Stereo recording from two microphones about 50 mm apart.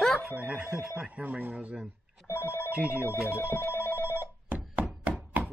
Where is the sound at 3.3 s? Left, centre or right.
Left.